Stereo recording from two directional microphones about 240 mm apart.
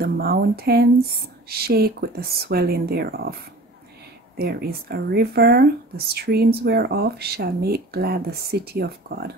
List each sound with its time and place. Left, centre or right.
0.0 s speech: right
4.4 s speech: right